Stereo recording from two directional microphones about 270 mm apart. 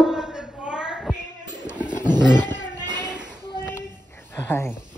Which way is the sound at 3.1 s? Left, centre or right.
Centre.